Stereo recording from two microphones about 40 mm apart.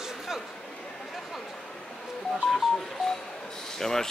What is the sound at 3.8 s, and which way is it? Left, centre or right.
Speech, centre.